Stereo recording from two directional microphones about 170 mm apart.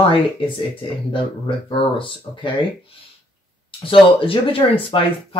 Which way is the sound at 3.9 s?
30° left (ahead or behind).